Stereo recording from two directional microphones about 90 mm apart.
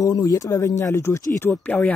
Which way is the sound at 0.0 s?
35° left (ahead or behind).